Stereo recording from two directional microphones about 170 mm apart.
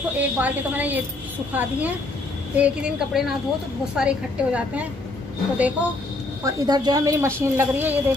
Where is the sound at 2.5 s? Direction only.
5° right (ahead or behind).